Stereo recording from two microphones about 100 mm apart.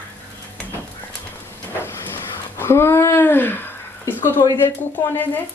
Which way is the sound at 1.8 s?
25° left (ahead or behind).